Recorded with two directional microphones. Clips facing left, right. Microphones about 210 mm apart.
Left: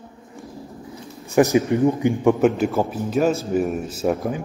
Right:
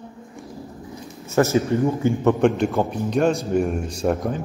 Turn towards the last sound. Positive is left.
turn(degrees=0)  # may be behind; listen again after turning